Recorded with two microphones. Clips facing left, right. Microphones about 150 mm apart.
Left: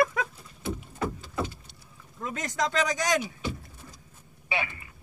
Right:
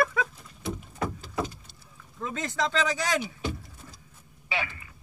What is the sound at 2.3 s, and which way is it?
Speech, 15° left (ahead or behind).